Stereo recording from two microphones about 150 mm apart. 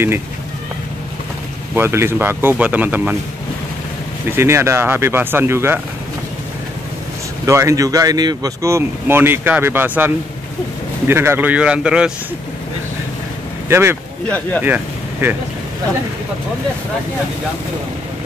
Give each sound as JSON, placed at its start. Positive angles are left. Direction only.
{"t": 1.8, "sound": "speech", "side_deg": -15}
{"t": 4.4, "sound": "speech", "side_deg": -15}
{"t": 7.4, "sound": "speech", "side_deg": -20}
{"t": 13.7, "sound": "speech", "side_deg": -15}